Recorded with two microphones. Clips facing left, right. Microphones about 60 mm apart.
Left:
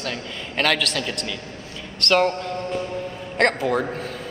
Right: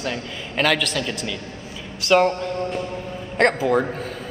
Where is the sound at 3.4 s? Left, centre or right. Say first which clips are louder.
Right 2 dB; centre.